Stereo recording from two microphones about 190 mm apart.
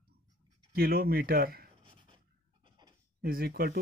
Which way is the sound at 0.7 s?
55° right (ahead or behind).